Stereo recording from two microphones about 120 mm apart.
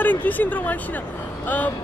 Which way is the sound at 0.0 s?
15° left (ahead or behind).